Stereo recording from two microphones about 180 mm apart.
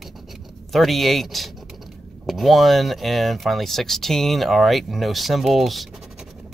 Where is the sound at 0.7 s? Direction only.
Centre (ahead or behind).